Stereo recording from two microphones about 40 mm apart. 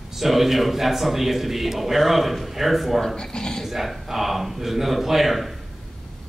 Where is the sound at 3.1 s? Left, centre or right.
Centre.